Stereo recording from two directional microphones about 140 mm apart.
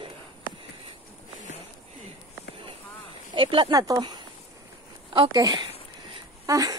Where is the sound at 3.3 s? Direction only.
40° right (ahead or behind).